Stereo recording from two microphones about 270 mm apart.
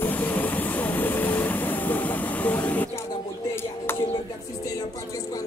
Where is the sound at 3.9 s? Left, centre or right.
Centre.